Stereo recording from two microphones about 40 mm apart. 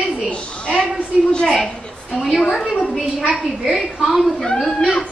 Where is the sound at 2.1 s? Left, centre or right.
Centre.